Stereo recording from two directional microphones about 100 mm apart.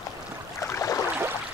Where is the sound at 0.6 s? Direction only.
30° left (ahead or behind).